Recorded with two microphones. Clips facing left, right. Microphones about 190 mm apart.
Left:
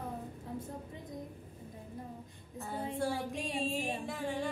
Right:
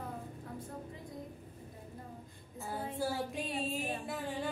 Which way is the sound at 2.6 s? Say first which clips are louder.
Left 1 dB; 5° right (ahead or behind).